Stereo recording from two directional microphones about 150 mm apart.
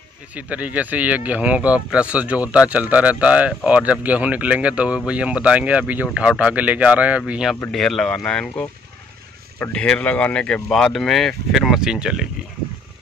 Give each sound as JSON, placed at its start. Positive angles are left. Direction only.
{"t": 0.3, "sound": "speech", "side_deg": -10}